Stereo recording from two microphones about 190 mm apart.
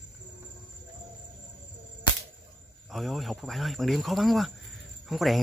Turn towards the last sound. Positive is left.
turn(degrees=0)  # may be behind; listen again after turning